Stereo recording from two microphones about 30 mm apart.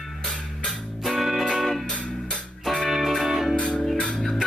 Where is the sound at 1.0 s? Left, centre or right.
Centre.